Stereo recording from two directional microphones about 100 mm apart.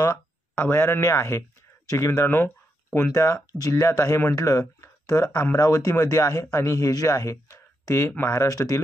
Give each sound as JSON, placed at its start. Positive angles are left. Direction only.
{"t": 0.6, "sound": "a man's voice", "side_deg": 25}